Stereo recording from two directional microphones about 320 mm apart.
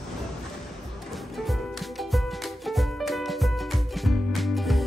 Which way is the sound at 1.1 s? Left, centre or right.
Centre.